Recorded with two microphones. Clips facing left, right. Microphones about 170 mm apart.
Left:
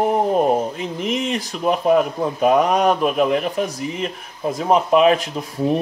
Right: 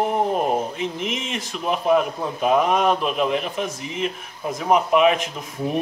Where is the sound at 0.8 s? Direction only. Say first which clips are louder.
Left 4 dB; 40° left (ahead or behind).